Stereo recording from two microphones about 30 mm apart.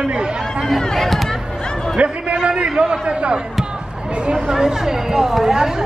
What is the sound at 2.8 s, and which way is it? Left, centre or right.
Speech, right.